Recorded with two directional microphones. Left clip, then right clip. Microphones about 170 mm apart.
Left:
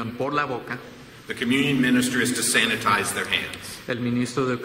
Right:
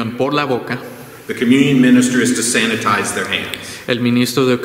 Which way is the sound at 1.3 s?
Centre (ahead or behind).